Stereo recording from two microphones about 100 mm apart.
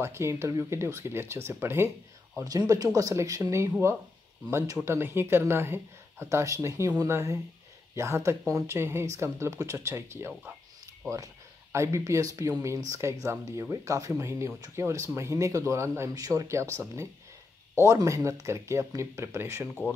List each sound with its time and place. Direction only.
0.0 s speech: 25° right (ahead or behind)
2.3 s speech: 40° right (ahead or behind)
11.7 s speech: 30° right (ahead or behind)
17.8 s speech: 30° right (ahead or behind)